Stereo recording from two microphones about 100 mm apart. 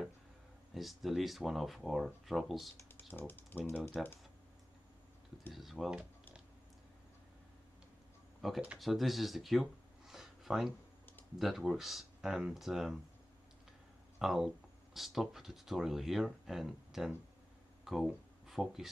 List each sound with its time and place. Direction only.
0.7 s speech: centre (ahead or behind)
3.1 s speech: 20° left (ahead or behind)
3.9 s speech: centre (ahead or behind)
5.5 s speech: centre (ahead or behind)
8.4 s speech: centre (ahead or behind)
14.1 s speech: 5° right (ahead or behind)